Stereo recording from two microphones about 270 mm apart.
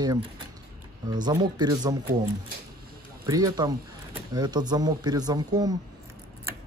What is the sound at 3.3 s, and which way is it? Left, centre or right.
Speech, centre.